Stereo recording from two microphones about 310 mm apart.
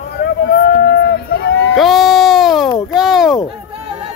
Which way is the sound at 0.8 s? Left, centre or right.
Left.